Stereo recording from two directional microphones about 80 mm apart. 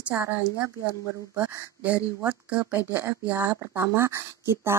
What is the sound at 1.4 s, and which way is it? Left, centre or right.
Speech, centre.